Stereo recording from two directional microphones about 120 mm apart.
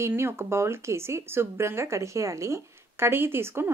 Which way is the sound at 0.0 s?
20° right (ahead or behind).